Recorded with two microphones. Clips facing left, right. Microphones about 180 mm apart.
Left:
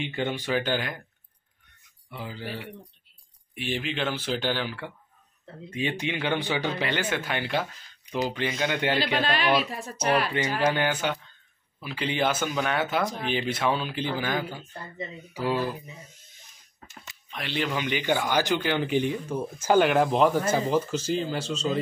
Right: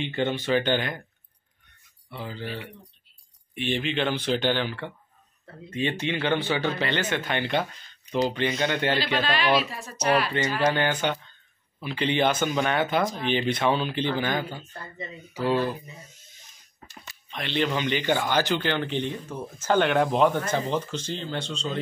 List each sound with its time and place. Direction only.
0.0 s speech: 10° left (ahead or behind)
2.0 s speech: 10° left (ahead or behind)
9.2 s speech: 50° left (ahead or behind)
10.3 s speech: 15° left (ahead or behind)
17.3 s speech: 5° left (ahead or behind)